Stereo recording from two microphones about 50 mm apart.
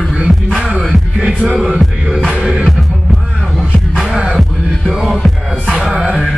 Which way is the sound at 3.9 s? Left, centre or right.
Centre.